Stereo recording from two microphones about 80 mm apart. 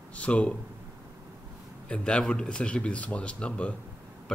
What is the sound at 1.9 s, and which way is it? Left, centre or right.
Speech, centre.